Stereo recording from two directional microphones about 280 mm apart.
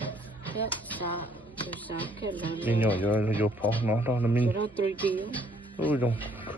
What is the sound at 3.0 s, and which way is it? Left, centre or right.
Speech, centre.